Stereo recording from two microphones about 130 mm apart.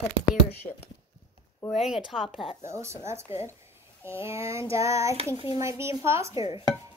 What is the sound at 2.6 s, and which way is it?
A woman's voice, 20° right (ahead or behind).